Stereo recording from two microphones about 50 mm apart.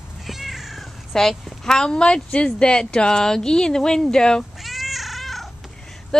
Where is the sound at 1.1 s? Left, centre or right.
Centre.